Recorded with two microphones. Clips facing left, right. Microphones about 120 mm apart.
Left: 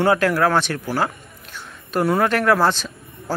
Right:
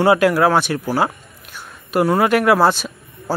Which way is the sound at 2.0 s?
10° right (ahead or behind).